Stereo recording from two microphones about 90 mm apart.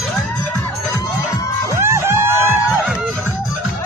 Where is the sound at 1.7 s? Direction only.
30° right (ahead or behind).